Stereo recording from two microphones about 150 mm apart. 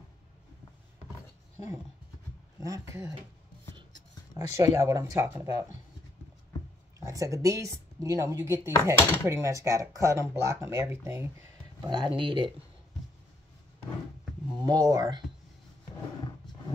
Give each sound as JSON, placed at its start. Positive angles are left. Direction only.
{"t": 2.6, "sound": "speech", "side_deg": -20}
{"t": 4.3, "sound": "speech", "side_deg": -20}
{"t": 7.0, "sound": "speech", "side_deg": -20}
{"t": 11.8, "sound": "speech", "side_deg": -30}
{"t": 14.5, "sound": "speech", "side_deg": -25}